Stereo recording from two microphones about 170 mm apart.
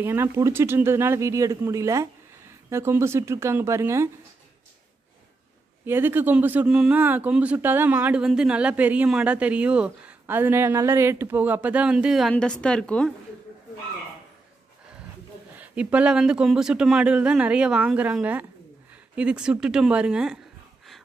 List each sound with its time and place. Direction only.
0.0 s speech: 15° right (ahead or behind)
5.9 s speech: 10° right (ahead or behind); by 13.1 s 5° left (ahead or behind)
15.5 s speech: 10° right (ahead or behind)